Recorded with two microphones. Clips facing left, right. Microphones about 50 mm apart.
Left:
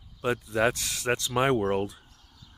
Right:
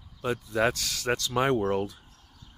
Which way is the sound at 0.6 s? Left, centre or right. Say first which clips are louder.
Right 1 dB; centre.